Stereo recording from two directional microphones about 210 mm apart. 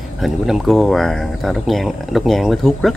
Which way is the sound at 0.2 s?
Centre (ahead or behind).